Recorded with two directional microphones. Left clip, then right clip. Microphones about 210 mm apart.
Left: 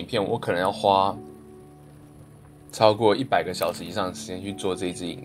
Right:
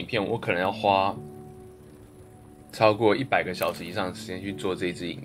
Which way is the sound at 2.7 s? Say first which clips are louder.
Left 2 dB; 20° left (ahead or behind).